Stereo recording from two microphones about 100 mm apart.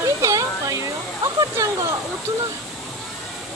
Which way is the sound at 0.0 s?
35° right (ahead or behind).